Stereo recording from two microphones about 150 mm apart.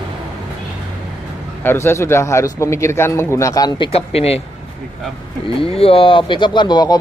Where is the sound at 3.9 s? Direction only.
40° left (ahead or behind).